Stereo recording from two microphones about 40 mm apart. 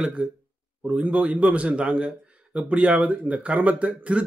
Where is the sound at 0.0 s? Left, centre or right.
Right.